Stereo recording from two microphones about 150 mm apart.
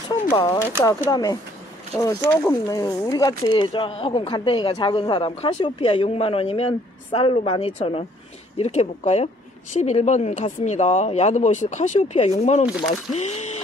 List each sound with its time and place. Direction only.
0.1 s speech: 30° left (ahead or behind); by 13.5 s 45° left (ahead or behind)